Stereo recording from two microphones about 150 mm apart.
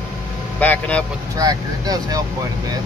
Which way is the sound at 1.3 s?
25° right (ahead or behind).